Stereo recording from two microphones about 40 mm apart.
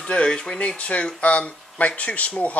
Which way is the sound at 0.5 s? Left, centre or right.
Left.